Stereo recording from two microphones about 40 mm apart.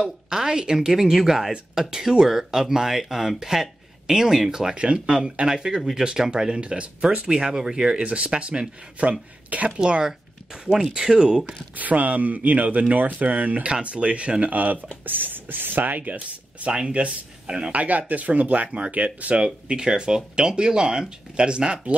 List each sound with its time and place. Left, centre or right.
0.3 s speech: centre
5.8 s speech: centre
6.0 s speech: centre
7.3 s speech: centre
8.0 s speech: right
10.0 s speech: centre
11.7 s speech: right
13.7 s speech: right